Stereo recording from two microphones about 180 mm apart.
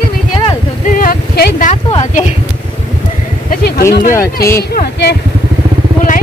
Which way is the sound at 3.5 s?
55° left (ahead or behind).